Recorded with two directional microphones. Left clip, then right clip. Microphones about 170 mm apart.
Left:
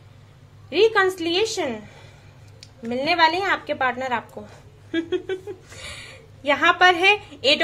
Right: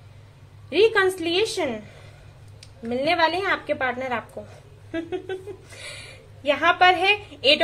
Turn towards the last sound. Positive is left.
turn(degrees=15)  # may be behind; listen again after turning